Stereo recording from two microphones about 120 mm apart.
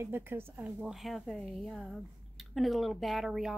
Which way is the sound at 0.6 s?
5° right (ahead or behind).